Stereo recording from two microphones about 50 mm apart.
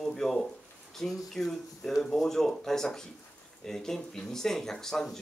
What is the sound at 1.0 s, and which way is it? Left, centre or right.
Speech, centre.